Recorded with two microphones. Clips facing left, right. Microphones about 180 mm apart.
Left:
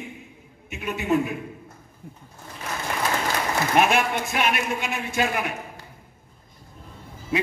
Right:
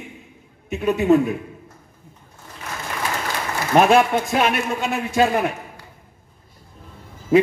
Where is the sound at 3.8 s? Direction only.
35° right (ahead or behind).